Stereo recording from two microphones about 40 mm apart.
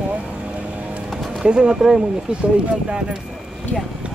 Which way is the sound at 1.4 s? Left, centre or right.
Centre.